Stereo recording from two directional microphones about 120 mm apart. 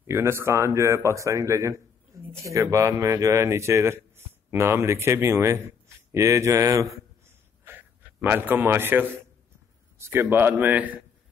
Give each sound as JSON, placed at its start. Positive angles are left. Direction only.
{"t": 0.0, "sound": "a man's voice", "side_deg": -20}